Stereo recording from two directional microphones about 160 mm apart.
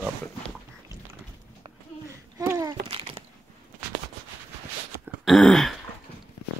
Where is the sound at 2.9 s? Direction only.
35° right (ahead or behind).